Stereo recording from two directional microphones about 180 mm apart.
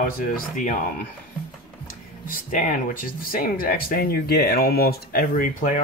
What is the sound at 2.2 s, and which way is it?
Speech, 45° left (ahead or behind).